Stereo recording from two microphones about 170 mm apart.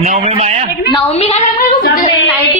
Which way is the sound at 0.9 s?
35° left (ahead or behind).